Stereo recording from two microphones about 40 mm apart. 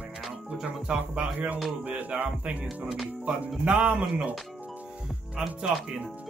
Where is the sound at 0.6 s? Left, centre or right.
Right.